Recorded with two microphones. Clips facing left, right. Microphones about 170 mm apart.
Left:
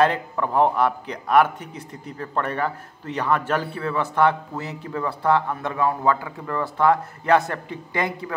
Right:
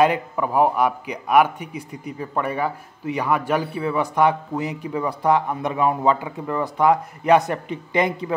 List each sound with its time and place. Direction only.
0.0 s a man's voice: 10° right (ahead or behind)